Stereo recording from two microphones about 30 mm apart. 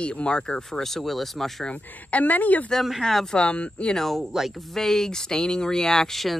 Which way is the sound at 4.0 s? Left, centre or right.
Centre.